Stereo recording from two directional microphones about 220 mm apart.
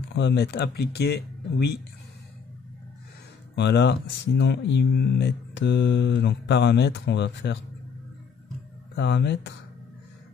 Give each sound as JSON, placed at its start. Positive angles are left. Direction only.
{"t": 0.1, "sound": "speech", "side_deg": 50}
{"t": 3.5, "sound": "speech", "side_deg": 50}
{"t": 8.9, "sound": "speech", "side_deg": 50}